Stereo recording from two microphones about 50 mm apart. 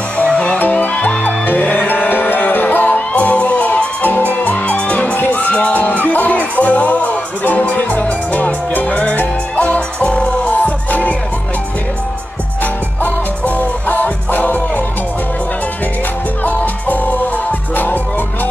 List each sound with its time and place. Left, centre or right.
0.2 s music: left
13.6 s music: left
16.4 s music: left